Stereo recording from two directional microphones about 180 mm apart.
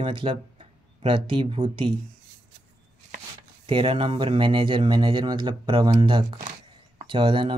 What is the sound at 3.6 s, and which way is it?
Speech, 30° right (ahead or behind).